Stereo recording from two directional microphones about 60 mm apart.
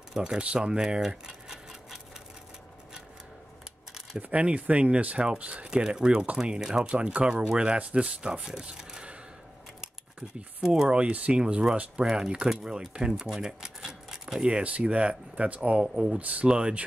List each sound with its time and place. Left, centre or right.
0.1 s speech: centre
4.2 s speech: right
10.6 s speech: centre
15.8 s speech: centre
16.2 s speech: right